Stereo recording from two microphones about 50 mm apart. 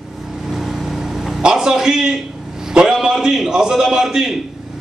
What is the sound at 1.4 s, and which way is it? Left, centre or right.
Speech, centre.